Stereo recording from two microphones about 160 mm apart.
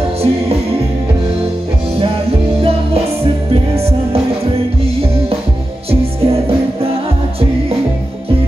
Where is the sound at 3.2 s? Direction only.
40° right (ahead or behind).